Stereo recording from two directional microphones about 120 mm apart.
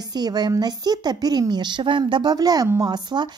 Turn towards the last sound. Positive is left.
turn(degrees=-35)  # may be behind; listen again after turning